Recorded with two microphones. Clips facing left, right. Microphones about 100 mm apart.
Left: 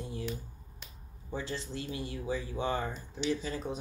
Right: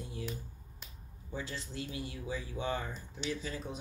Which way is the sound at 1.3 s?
30° left (ahead or behind).